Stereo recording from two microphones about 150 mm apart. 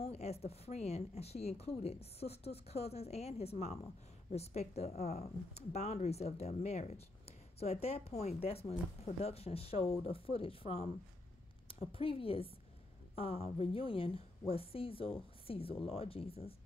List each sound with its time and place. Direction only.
0.0 s a woman's voice: 45° left (ahead or behind)